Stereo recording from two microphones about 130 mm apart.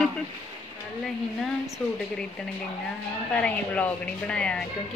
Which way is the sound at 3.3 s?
10° left (ahead or behind).